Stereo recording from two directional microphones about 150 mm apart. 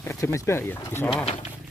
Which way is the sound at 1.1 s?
45° left (ahead or behind).